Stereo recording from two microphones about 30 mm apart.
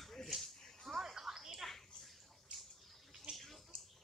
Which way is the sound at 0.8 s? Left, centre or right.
Centre.